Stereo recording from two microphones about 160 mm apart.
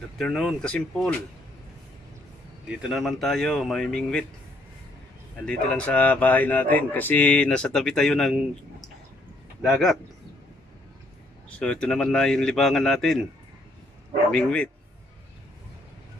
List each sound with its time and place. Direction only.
0.2 s a man's voice: centre (ahead or behind)
2.7 s a man's voice: 5° right (ahead or behind)
5.4 s speech: 5° left (ahead or behind)
9.6 s speech: centre (ahead or behind)
11.5 s a man's voice: 5° left (ahead or behind)
14.3 s speech: 5° left (ahead or behind)